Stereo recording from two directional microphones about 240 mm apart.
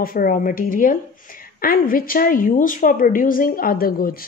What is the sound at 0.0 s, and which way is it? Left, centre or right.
A woman's voice, left.